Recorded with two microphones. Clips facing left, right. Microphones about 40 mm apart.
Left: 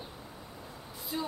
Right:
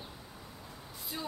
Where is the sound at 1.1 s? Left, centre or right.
Centre.